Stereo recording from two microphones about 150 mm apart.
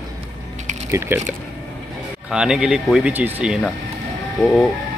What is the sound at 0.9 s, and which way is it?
Speech, 15° right (ahead or behind).